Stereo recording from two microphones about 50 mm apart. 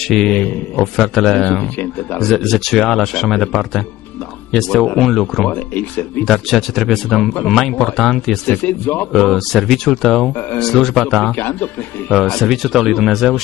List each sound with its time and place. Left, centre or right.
0.0 s a man's voice: centre
5.5 s speech: left
6.2 s speech: centre
8.6 s speech: left
9.1 s speech: centre
11.3 s speech: left
12.1 s speech: centre